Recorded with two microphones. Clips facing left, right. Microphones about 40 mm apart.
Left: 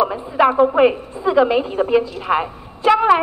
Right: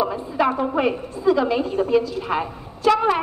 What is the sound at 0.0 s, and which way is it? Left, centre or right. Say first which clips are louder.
A woman's voice: left 5 dB; left.